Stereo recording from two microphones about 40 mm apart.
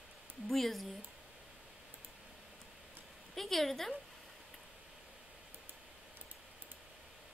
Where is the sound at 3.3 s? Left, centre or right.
Centre.